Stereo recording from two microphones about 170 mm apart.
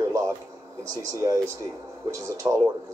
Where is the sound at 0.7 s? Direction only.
20° right (ahead or behind).